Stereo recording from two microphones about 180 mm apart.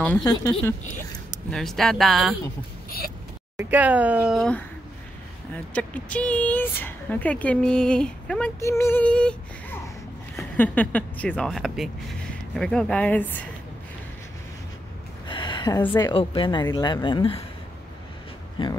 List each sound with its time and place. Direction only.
0.2 s speech: 20° left (ahead or behind)
1.5 s speech: centre (ahead or behind)
3.5 s speech: 10° right (ahead or behind)
5.7 s speech: 10° left (ahead or behind)
8.5 s speech: 15° left (ahead or behind)
15.2 s a sound: 25° left (ahead or behind)
16.0 s speech: 25° left (ahead or behind)
18.6 s speech: 30° left (ahead or behind)